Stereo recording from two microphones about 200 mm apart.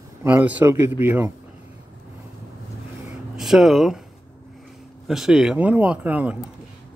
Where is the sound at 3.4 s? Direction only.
Centre (ahead or behind).